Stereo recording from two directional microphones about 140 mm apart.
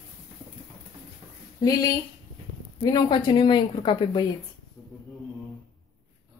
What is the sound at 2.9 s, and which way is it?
A woman's voice, 35° left (ahead or behind).